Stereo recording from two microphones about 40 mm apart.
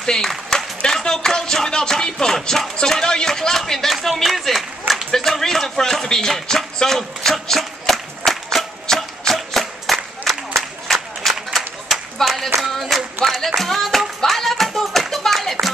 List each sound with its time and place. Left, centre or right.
0.0 s speech: centre
0.5 s music: centre
2.8 s speech: centre
8.3 s a sound: centre
11.5 s clapping: centre
12.9 s a sound: centre
13.6 s music: centre